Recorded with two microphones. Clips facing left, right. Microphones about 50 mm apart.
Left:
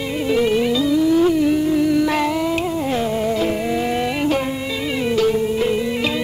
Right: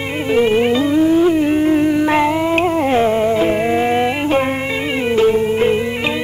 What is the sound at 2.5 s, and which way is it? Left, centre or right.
Music, right.